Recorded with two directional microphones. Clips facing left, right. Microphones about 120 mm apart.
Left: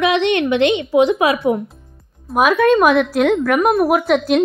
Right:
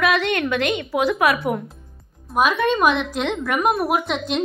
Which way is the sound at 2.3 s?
5° left (ahead or behind).